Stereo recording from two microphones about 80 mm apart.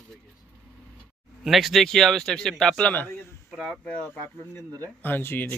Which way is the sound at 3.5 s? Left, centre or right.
Centre.